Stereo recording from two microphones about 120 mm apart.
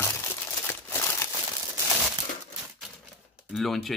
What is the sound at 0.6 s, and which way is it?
Crumpling, 20° left (ahead or behind).